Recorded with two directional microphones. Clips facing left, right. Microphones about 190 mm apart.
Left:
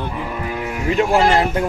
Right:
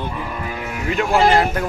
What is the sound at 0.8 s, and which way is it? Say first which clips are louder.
Speech: left 1 dB; 30° left (ahead or behind).